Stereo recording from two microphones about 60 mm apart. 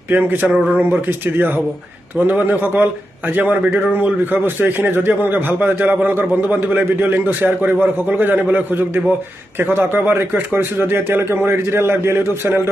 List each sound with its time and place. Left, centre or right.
0.1 s a man's voice: right